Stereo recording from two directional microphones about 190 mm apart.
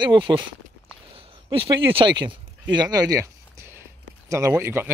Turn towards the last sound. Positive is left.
turn(degrees=-15)  # may be behind; listen again after turning